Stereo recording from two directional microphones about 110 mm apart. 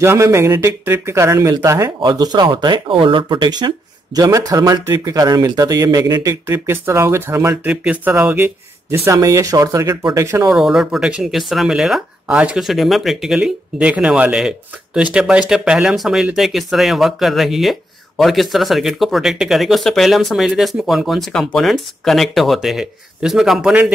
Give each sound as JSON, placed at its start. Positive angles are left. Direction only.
{"t": 0.0, "sound": "speech", "side_deg": -25}
{"t": 6.4, "sound": "speech", "side_deg": -25}
{"t": 7.7, "sound": "speech", "side_deg": -10}
{"t": 10.5, "sound": "speech", "side_deg": -5}